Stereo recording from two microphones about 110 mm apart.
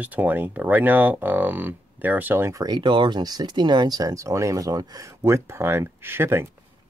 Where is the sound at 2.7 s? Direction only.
45° right (ahead or behind); by 6.4 s 20° right (ahead or behind).